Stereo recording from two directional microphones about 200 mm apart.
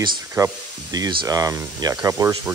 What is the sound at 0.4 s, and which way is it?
Speech, 20° right (ahead or behind).